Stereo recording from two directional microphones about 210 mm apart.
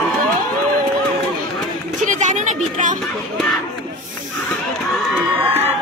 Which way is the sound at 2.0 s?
35° right (ahead or behind).